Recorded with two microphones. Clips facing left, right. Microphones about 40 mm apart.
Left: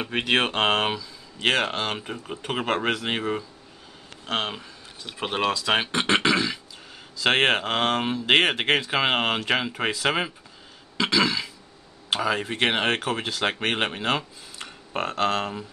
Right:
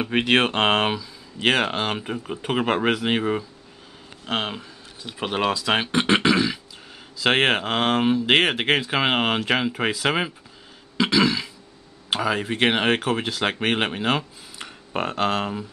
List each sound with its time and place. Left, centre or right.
0.1 s speech: centre
11.0 s throat clearing: centre
12.1 s speech: centre